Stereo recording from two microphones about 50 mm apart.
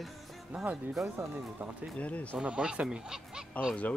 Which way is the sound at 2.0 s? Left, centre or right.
Left.